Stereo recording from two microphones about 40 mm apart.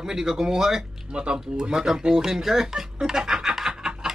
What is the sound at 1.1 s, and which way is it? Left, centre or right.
Speech, right.